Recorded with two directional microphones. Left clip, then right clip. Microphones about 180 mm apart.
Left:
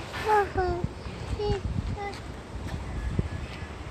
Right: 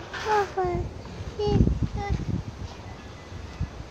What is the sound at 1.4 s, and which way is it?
Speech, 25° right (ahead or behind).